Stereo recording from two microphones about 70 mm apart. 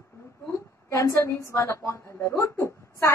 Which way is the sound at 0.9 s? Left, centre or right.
Left.